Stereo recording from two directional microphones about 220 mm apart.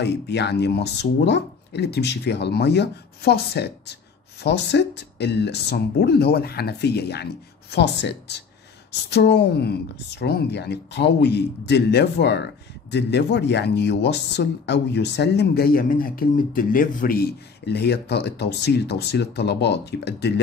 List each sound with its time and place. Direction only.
0.0 s speech: 50° left (ahead or behind)